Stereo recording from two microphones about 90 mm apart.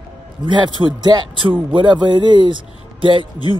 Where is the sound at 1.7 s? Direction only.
60° right (ahead or behind).